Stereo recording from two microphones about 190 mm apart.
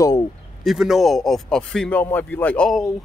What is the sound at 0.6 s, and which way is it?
Speech, centre (ahead or behind).